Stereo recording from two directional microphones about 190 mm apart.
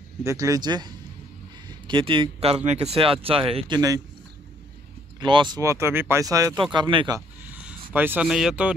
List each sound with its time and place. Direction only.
0.2 s speech: 15° right (ahead or behind)
5.2 s speech: 25° right (ahead or behind)
7.2 s a sound: 5° right (ahead or behind)